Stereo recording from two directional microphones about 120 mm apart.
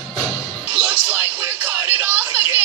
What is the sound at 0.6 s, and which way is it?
Music, 10° right (ahead or behind).